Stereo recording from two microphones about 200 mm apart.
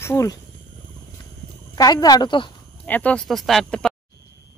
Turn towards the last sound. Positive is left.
turn(degrees=0)  # may be behind; listen again after turning